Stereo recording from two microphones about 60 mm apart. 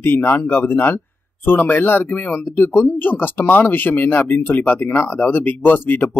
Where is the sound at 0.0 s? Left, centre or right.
Left.